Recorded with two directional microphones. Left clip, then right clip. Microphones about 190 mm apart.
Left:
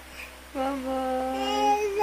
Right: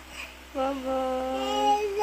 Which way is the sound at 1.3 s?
5° left (ahead or behind).